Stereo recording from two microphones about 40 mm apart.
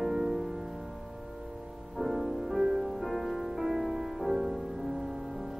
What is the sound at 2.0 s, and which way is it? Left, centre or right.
Music, centre.